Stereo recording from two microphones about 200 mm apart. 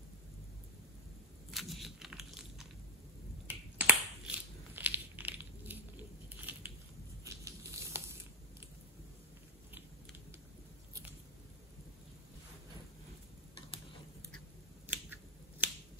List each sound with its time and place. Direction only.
1.5 s a sound: centre (ahead or behind)
3.4 s crushing: 10° right (ahead or behind)
6.5 s biting: 5° right (ahead or behind)
7.2 s crumpling: 15° right (ahead or behind)
15.6 s finger snapping: 10° right (ahead or behind)